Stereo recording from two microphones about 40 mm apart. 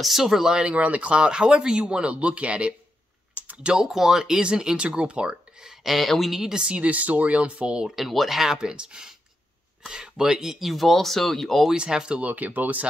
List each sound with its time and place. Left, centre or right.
0.0 s speech: centre
0.7 s speech: right
3.7 s speech: centre
5.9 s speech: centre
6.4 s speech: right
7.8 s speech: centre
8.5 s speech: right; by 11.6 s centre
11.7 s speech: right
12.2 s speech: right